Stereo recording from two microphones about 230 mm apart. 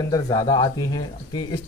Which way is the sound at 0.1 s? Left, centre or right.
Centre.